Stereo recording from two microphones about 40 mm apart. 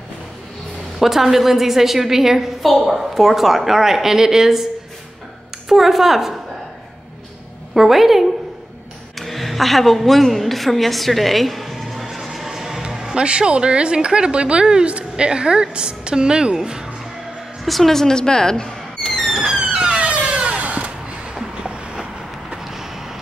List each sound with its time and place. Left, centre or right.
0.9 s a woman's voice: centre
5.7 s a woman's voice: centre
7.7 s a woman's voice: centre
9.2 s a sound: centre
13.0 s a woman's voice: right
17.6 s speech: centre
19.2 s police car: centre
19.5 s police car: right
20.0 s a sound: right
22.5 s vehicle: centre